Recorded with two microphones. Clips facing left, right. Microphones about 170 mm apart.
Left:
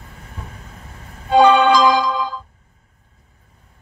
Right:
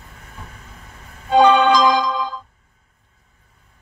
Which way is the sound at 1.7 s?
5° left (ahead or behind).